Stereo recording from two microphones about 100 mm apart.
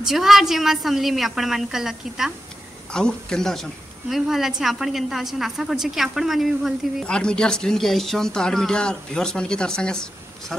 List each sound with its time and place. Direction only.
0.0 s a woman's voice: 5° right (ahead or behind)
2.9 s a woman's voice: 10° left (ahead or behind)
7.1 s speech: 10° left (ahead or behind)